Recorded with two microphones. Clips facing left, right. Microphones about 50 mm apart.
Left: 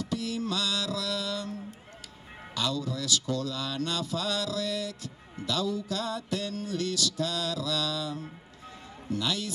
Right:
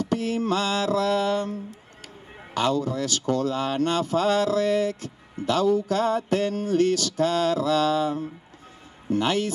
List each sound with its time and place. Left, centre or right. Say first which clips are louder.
0.0 s speech: right 7 dB; right